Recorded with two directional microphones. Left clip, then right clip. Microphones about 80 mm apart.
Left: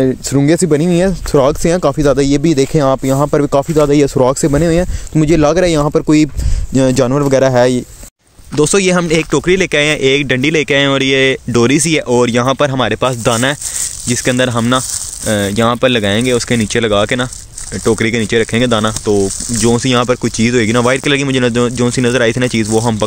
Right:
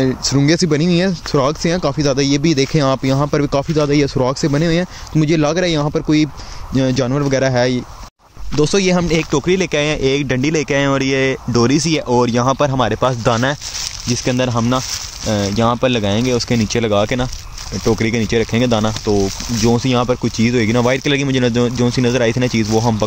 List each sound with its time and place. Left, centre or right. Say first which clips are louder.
0.7 s speech: left 4 dB; left
2.9 s speech: left 4 dB; centre
3.2 s speech: left 5 dB; centre
3.9 s speech: left 5 dB; left
4.5 s speech: left 5 dB; left
5.2 s speech: left 5 dB; left
7.1 s speech: left 5 dB; left
8.5 s speech: left 4 dB; centre
14.1 s speech: left 4 dB; centre
15.2 s speech: left 3 dB; centre
19.6 s speech: left 3 dB; centre